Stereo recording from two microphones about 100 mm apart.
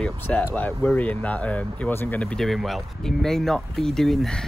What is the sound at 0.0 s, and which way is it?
Speech, 10° left (ahead or behind).